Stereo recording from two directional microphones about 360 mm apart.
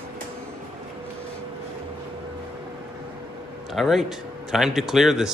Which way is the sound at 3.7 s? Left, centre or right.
Centre.